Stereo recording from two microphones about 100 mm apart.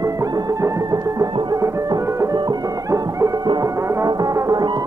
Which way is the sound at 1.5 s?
30° right (ahead or behind).